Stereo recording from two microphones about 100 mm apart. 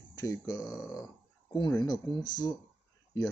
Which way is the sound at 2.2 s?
40° left (ahead or behind).